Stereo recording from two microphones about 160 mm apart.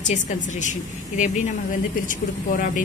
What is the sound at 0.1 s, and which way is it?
A woman's voice, 50° left (ahead or behind).